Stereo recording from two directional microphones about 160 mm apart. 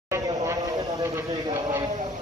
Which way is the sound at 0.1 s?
20° right (ahead or behind).